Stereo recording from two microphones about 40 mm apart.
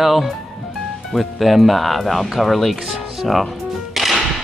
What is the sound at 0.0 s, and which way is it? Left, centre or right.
Speech, centre.